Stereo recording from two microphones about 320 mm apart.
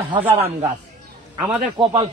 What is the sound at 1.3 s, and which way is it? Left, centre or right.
Speech, centre.